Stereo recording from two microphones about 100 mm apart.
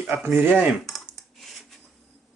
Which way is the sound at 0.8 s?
Centre (ahead or behind).